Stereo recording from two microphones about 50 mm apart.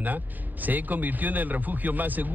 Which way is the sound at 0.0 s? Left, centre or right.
Right.